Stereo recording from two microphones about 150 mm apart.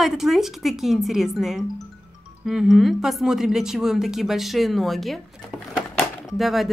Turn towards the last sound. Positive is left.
turn(degrees=0)  # may be behind; listen again after turning